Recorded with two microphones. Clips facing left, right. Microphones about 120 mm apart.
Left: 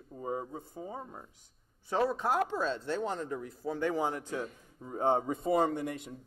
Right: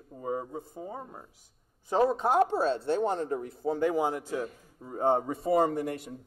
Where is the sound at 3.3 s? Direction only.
55° right (ahead or behind).